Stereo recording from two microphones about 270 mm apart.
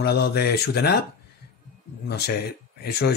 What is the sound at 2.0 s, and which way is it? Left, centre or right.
Speech, left.